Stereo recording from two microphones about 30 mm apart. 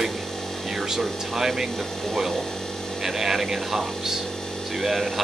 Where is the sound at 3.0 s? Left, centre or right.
Centre.